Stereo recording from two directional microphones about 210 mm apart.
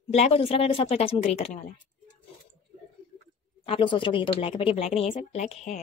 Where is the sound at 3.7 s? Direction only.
25° left (ahead or behind).